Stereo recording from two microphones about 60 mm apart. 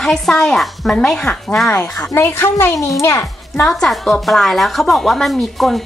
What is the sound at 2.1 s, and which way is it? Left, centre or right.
A child's voice, left.